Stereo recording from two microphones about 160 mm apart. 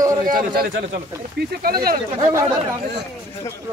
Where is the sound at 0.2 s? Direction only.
60° right (ahead or behind).